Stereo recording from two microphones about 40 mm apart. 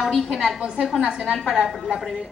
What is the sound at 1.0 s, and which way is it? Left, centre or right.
Speech, right.